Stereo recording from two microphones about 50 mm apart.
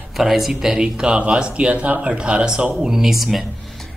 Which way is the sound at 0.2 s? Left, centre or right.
Centre.